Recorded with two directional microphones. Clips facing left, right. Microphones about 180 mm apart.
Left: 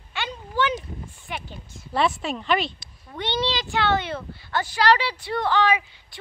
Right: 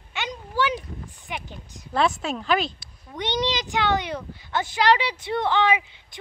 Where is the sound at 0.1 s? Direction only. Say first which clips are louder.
Even; 15° right (ahead or behind).